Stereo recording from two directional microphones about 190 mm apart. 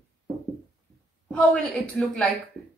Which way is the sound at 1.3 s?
5° left (ahead or behind).